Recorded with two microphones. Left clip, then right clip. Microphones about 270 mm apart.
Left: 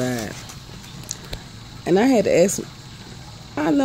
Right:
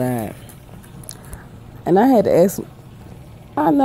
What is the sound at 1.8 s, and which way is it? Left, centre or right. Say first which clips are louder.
Speech: right 3 dB; centre.